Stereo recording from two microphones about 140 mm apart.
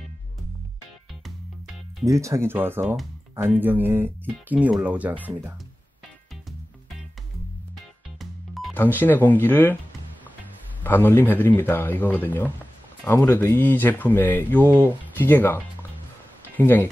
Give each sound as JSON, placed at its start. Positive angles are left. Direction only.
{"t": 2.0, "sound": "speech", "side_deg": -20}
{"t": 8.2, "sound": "music", "side_deg": 0}
{"t": 8.7, "sound": "speech", "side_deg": 15}
{"t": 10.8, "sound": "speech", "side_deg": 15}